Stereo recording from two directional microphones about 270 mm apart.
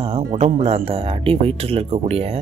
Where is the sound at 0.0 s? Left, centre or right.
Centre.